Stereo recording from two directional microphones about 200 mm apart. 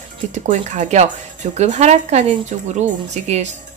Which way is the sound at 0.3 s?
35° right (ahead or behind).